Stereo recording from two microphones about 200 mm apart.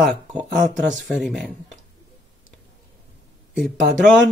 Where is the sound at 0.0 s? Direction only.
5° right (ahead or behind).